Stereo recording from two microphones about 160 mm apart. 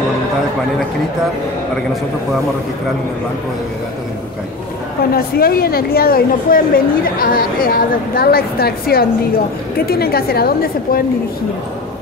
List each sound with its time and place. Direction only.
5.1 s a woman's voice: 70° left (ahead or behind)